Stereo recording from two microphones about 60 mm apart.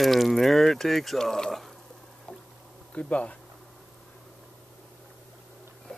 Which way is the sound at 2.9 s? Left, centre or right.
Left.